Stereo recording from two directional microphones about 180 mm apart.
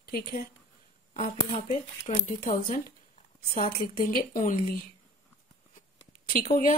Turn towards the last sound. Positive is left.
turn(degrees=45)  # may be behind; listen again after turning